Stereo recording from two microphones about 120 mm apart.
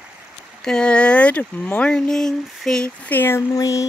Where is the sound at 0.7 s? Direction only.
5° left (ahead or behind).